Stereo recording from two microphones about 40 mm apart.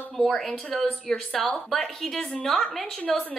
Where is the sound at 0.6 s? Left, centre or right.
Centre.